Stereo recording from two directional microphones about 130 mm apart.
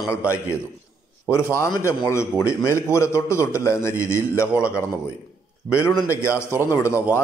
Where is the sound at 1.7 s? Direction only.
20° left (ahead or behind).